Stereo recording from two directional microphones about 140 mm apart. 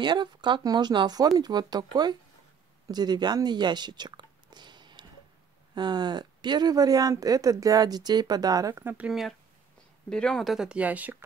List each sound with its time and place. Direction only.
0.0 s speech: 35° right (ahead or behind)
8.8 s speech: 10° right (ahead or behind)
10.0 s speech: 5° left (ahead or behind); by 11.2 s 10° right (ahead or behind)